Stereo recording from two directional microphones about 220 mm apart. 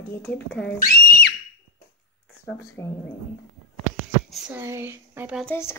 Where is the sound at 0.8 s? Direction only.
40° left (ahead or behind).